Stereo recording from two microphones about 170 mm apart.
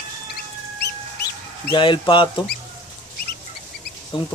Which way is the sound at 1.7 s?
30° left (ahead or behind).